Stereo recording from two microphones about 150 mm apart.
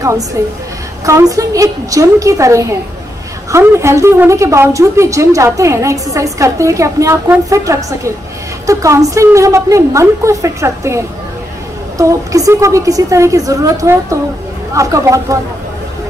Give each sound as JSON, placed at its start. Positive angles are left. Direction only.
{"t": 0.4, "sound": "a woman's voice", "side_deg": -20}